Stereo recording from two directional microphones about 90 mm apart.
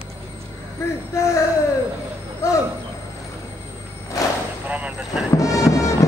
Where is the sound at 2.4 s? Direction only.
30° left (ahead or behind).